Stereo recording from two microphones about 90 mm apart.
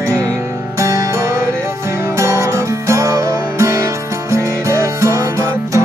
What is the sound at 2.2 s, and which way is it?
Music, 30° right (ahead or behind).